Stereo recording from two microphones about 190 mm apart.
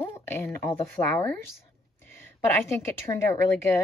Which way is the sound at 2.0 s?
10° left (ahead or behind).